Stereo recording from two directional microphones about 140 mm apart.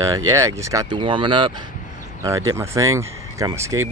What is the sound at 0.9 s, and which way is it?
Speech, 35° right (ahead or behind).